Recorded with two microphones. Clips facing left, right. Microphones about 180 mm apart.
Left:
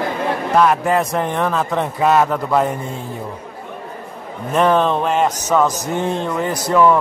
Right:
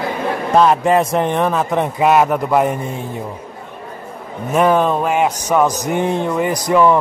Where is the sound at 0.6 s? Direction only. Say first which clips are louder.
Right 3 dB; 25° right (ahead or behind).